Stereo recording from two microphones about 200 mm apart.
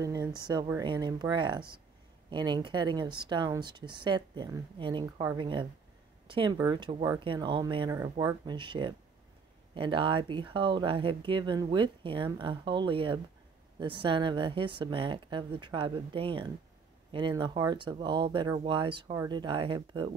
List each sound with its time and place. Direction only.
0.0 s speech: 15° right (ahead or behind)
8.5 s speech: 25° right (ahead or behind)